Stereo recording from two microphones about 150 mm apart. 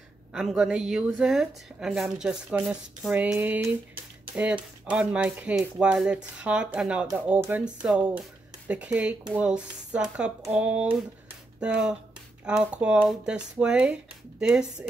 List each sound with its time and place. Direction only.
0.3 s a woman's voice: 5° right (ahead or behind)